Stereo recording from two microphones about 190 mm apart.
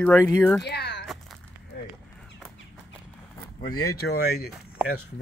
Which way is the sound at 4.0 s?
55° left (ahead or behind).